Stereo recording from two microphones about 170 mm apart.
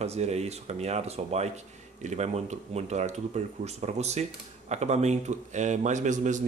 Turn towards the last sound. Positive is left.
turn(degrees=-45)  # may be behind; listen again after turning